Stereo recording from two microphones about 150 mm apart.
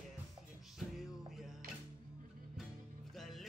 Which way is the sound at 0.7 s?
Centre (ahead or behind).